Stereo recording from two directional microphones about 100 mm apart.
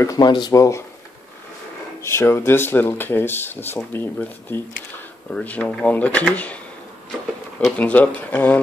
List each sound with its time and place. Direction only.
0.2 s speech: 45° left (ahead or behind)
0.6 s speech: 30° left (ahead or behind)
2.0 s speech: 25° left (ahead or behind)
7.7 s speech: 15° left (ahead or behind)